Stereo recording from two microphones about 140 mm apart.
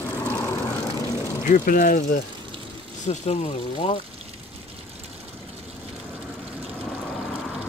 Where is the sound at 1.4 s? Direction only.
75° left (ahead or behind).